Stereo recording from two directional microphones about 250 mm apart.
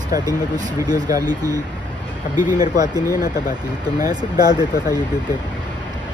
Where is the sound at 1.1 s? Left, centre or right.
Centre.